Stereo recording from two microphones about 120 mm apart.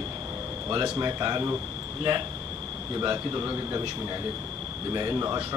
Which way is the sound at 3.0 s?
30° right (ahead or behind).